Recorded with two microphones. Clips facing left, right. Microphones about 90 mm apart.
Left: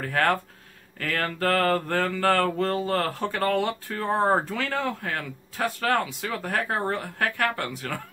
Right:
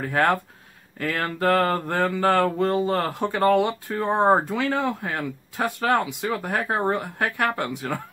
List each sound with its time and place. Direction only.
0.0 s mantra: 15° right (ahead or behind)